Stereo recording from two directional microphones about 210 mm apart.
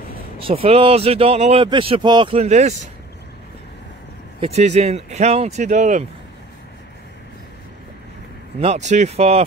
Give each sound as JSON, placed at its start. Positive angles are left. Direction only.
{"t": 0.4, "sound": "speech", "side_deg": -25}
{"t": 4.4, "sound": "speech", "side_deg": -30}
{"t": 8.5, "sound": "speech", "side_deg": -30}